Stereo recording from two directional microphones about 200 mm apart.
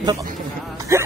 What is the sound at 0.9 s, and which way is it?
Speech, 15° right (ahead or behind).